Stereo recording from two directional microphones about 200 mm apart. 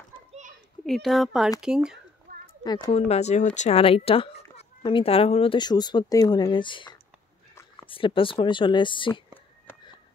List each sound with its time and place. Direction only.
0.8 s speech: centre (ahead or behind)
2.6 s speech: 20° left (ahead or behind)
3.1 s speech: 35° left (ahead or behind)